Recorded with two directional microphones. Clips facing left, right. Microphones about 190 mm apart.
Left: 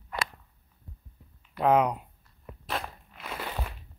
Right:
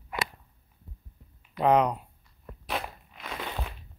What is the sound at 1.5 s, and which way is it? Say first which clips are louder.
Speech: right 1 dB; 5° left (ahead or behind).